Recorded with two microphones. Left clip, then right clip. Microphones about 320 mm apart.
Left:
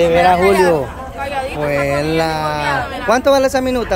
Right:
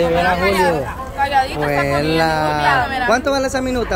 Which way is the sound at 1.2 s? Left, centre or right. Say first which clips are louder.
Right 6 dB; centre.